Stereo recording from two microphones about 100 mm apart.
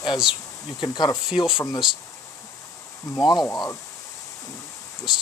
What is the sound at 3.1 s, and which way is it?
Speech, 45° left (ahead or behind).